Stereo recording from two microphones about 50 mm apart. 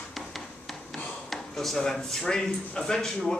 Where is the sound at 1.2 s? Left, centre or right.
Centre.